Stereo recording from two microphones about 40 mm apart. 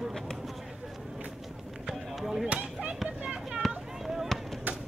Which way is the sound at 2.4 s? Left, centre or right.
Right.